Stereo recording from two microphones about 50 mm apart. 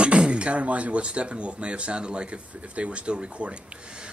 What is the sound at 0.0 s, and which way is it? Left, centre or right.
Speech, right.